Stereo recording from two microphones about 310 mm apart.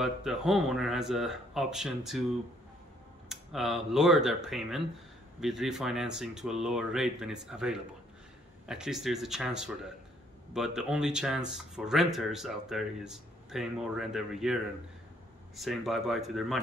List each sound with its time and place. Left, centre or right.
0.0 s speech: centre
3.3 s speech: centre